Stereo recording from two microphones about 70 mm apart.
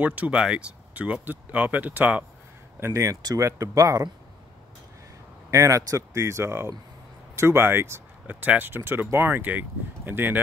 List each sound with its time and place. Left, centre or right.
0.0 s speech: right
0.4 s speech: centre
2.8 s speech: right
5.5 s speech: right
8.3 s speech: right